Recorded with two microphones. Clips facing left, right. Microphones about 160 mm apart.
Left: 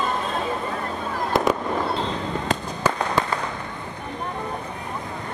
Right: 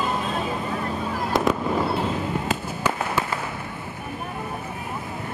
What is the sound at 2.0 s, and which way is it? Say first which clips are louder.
Fireworks: right 1 dB; 10° right (ahead or behind).